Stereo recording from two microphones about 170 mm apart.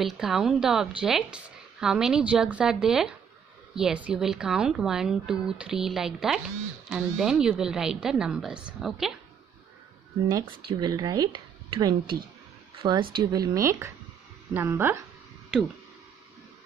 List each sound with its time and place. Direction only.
0.0 s a woman's voice: centre (ahead or behind)
10.7 s speech: 25° right (ahead or behind)